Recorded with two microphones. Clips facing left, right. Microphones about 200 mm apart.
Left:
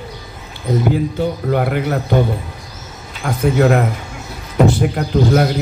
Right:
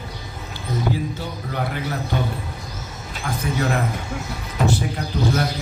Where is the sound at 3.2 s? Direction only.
55° left (ahead or behind).